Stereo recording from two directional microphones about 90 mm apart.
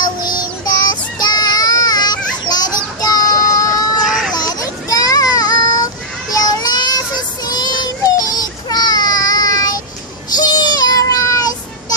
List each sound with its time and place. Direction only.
0.0 s child singing: 50° left (ahead or behind)
4.0 s a sound: 5° right (ahead or behind)
4.3 s child singing: 45° left (ahead or behind)